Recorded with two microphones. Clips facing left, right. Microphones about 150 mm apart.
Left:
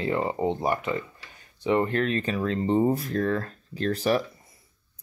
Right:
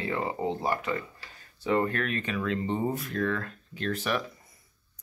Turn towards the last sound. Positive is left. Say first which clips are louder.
# left 6 dB
turn(degrees=35)  # may be behind; listen again after turning